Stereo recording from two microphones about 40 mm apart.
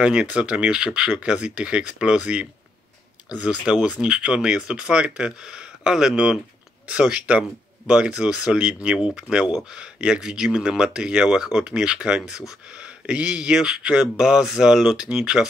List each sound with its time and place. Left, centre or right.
0.0 s speech: right